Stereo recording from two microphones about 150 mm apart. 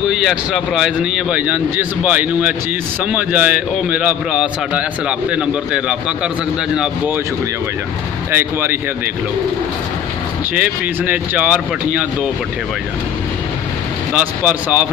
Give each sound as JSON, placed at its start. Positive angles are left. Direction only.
{"t": 0.1, "sound": "a man's voice", "side_deg": -5}
{"t": 8.3, "sound": "a man's voice", "side_deg": -15}
{"t": 10.5, "sound": "a man's voice", "side_deg": -10}
{"t": 14.1, "sound": "a man's voice", "side_deg": -10}